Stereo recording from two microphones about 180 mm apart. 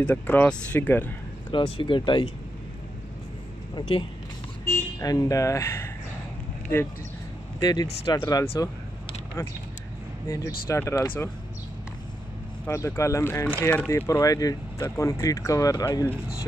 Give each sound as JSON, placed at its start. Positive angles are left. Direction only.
{"t": 0.0, "sound": "speech", "side_deg": 10}
{"t": 1.5, "sound": "speech", "side_deg": 25}
{"t": 3.7, "sound": "speech", "side_deg": 25}
{"t": 5.0, "sound": "speech", "side_deg": 20}
{"t": 7.6, "sound": "speech", "side_deg": 20}
{"t": 8.5, "sound": "vehicle", "side_deg": 20}
{"t": 10.2, "sound": "speech", "side_deg": 15}
{"t": 12.6, "sound": "speech", "side_deg": 15}